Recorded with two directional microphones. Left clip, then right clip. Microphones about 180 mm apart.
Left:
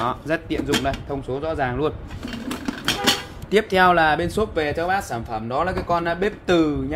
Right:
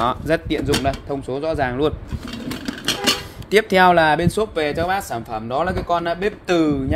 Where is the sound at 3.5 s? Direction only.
40° right (ahead or behind).